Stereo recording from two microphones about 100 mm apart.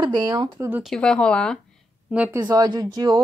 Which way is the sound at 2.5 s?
40° right (ahead or behind).